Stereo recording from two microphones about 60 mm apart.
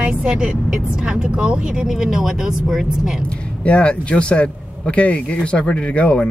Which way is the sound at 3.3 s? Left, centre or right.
Centre.